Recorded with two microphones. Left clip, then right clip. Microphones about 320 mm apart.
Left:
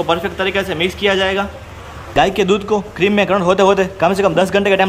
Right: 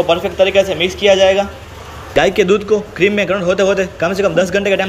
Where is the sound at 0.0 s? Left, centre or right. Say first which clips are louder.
Right 4 dB; centre.